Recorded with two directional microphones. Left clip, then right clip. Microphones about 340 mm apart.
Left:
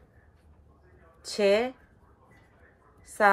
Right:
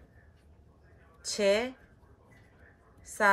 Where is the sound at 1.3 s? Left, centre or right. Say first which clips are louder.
Left 3 dB; centre.